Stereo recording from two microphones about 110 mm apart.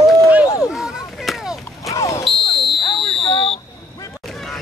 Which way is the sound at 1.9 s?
30° left (ahead or behind).